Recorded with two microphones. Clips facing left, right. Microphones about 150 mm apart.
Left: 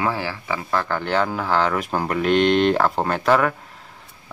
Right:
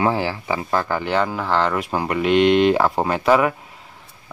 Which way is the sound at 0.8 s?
5° right (ahead or behind).